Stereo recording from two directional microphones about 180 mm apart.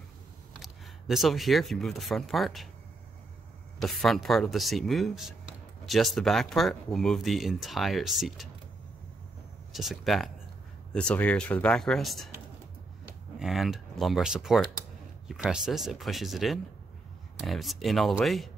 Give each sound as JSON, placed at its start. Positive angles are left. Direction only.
{"t": 0.6, "sound": "speech", "side_deg": 0}
{"t": 3.8, "sound": "speech", "side_deg": 0}
{"t": 9.7, "sound": "speech", "side_deg": 0}
{"t": 13.4, "sound": "speech", "side_deg": 0}